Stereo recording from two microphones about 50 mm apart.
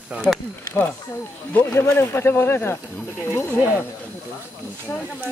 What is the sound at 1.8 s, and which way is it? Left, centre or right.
Speech, left.